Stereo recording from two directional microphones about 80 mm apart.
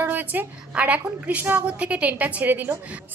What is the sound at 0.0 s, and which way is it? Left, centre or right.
A woman's voice, right.